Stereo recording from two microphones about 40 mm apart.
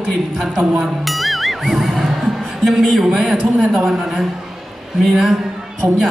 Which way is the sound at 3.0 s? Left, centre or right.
Centre.